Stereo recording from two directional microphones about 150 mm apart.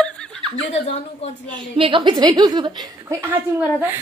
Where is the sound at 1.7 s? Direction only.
35° right (ahead or behind).